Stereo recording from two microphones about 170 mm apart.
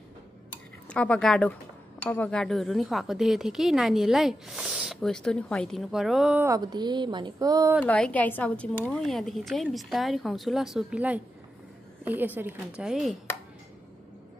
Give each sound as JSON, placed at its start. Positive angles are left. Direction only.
{"t": 0.8, "sound": "speech", "side_deg": 5}
{"t": 6.4, "sound": "speech", "side_deg": -20}
{"t": 7.8, "sound": "speech", "side_deg": 10}
{"t": 12.4, "sound": "speech", "side_deg": -10}